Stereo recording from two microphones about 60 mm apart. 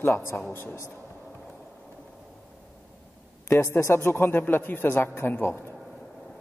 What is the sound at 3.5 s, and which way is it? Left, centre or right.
A man's voice, left.